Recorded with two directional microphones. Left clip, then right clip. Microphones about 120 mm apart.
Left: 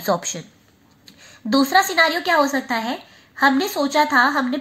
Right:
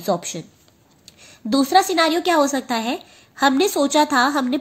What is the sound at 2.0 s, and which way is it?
A woman's voice, 75° right (ahead or behind).